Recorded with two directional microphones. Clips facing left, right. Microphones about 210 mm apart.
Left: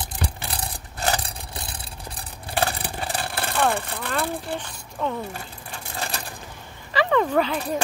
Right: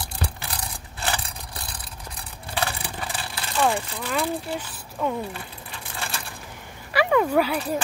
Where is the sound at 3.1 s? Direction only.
55° left (ahead or behind).